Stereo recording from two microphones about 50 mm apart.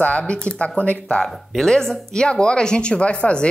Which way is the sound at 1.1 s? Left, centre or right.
Centre.